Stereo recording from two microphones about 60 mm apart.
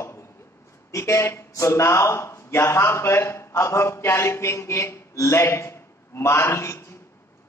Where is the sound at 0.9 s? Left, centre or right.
Left.